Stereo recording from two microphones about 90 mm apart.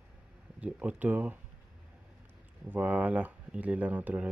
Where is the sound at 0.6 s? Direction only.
15° right (ahead or behind).